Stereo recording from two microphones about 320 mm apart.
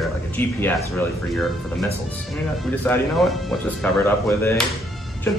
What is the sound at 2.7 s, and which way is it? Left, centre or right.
Speech, centre.